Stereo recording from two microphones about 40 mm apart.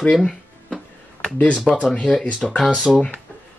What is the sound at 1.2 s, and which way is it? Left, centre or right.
Speech, left.